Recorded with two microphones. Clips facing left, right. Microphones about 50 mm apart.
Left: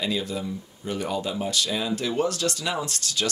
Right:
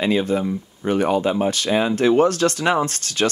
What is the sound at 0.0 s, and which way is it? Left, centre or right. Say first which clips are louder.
Speech: right 9 dB; right.